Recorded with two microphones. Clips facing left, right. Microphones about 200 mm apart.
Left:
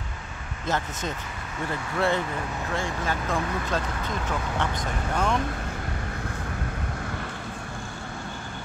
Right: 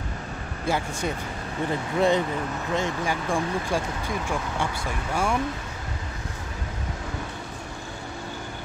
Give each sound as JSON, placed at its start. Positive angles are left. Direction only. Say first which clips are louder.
{"t": 0.7, "sound": "speech", "louder": "right 2 dB", "side_deg": -10}